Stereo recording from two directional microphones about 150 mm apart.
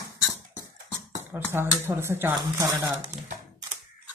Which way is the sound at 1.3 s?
15° right (ahead or behind).